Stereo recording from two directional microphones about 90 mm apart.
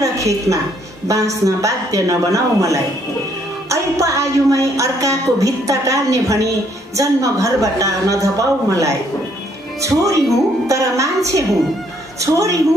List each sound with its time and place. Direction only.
0.0 s a woman's voice: 35° right (ahead or behind)
1.0 s child singing: 35° right (ahead or behind)
12.2 s child singing: 35° right (ahead or behind)